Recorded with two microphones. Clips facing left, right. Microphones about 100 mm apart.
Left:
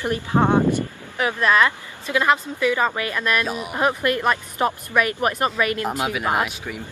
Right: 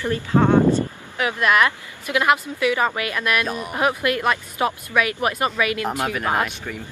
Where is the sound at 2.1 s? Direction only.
15° right (ahead or behind).